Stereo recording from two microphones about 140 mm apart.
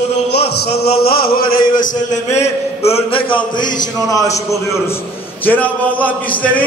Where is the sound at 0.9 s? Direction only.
90° left.